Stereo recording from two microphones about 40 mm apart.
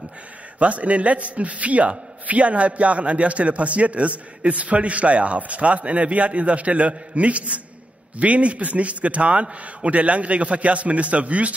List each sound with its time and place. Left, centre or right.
0.6 s a man's voice: right